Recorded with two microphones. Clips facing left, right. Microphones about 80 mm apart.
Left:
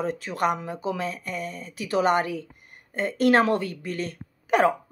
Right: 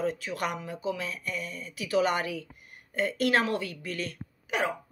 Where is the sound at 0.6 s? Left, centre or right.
Left.